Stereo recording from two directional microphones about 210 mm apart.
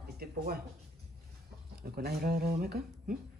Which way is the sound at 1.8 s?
45° right (ahead or behind).